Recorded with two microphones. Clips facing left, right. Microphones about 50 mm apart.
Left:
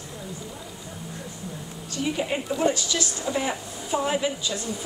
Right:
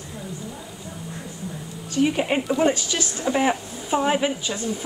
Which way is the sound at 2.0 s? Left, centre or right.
Right.